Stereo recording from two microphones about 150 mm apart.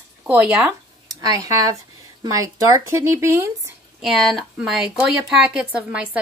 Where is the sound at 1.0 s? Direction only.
25° right (ahead or behind).